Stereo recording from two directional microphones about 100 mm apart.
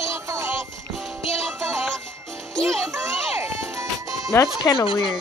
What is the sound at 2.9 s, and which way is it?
Music, 30° right (ahead or behind).